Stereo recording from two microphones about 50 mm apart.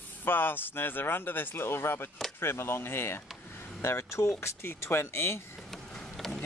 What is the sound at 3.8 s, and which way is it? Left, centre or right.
Speech, left.